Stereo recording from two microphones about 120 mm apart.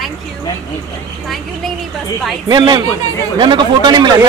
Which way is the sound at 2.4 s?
40° right (ahead or behind).